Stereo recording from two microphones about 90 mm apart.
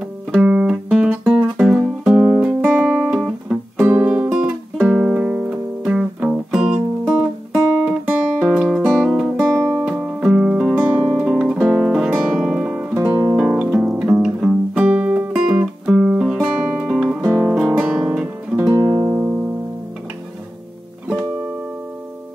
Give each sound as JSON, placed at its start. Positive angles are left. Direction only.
{"t": 0.4, "sound": "music", "side_deg": -10}
{"t": 3.8, "sound": "music", "side_deg": -20}
{"t": 9.5, "sound": "music", "side_deg": -30}
{"t": 10.2, "sound": "music", "side_deg": -10}
{"t": 11.6, "sound": "guitar", "side_deg": -10}
{"t": 13.4, "sound": "music", "side_deg": -10}
{"t": 17.0, "sound": "guitar", "side_deg": -10}
{"t": 18.7, "sound": "guitar", "side_deg": -30}